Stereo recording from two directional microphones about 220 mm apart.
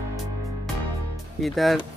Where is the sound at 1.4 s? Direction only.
Centre (ahead or behind).